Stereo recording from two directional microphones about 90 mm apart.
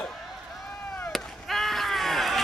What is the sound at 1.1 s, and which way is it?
Chop, centre (ahead or behind).